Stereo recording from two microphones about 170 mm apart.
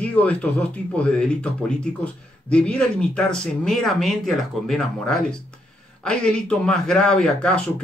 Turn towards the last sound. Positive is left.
turn(degrees=5)  # may be behind; listen again after turning